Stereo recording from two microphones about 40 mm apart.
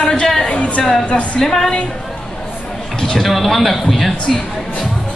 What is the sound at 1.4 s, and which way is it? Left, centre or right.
Speech, centre.